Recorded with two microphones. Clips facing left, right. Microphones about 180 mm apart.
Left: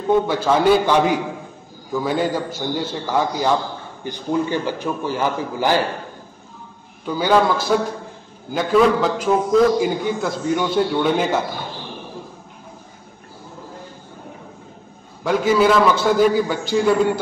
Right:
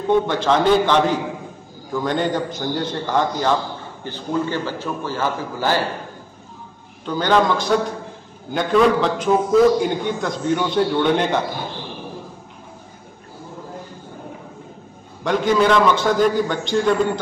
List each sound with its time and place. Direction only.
0.1 s a man's voice: 10° left (ahead or behind)
7.1 s a man's voice: 10° left (ahead or behind)
15.2 s a man's voice: 5° left (ahead or behind)